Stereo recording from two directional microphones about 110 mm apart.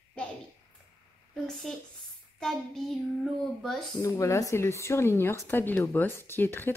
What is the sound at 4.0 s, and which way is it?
Speech, 30° left (ahead or behind).